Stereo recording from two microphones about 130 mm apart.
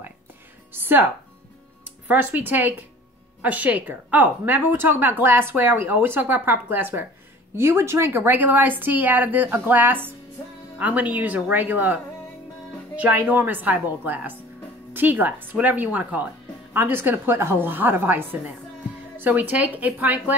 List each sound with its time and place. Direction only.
0.7 s a woman's voice: 15° right (ahead or behind)
2.0 s a woman's voice: 15° right (ahead or behind)